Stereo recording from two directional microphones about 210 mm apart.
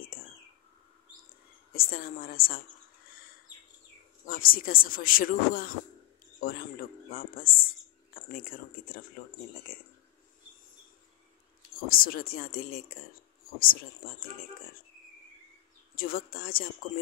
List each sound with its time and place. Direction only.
1.7 s speech: 45° left (ahead or behind)
4.3 s speech: 45° left (ahead or behind)
9.7 s speech: 70° left (ahead or behind)
11.7 s speech: 45° left (ahead or behind)
16.0 s speech: 45° left (ahead or behind)